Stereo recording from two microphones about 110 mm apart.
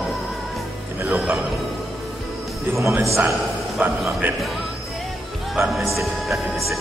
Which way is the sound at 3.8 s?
15° right (ahead or behind).